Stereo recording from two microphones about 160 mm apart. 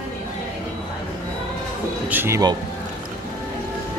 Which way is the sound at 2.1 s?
15° right (ahead or behind).